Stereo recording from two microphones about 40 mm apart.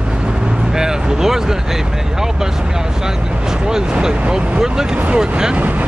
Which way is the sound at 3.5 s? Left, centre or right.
Centre.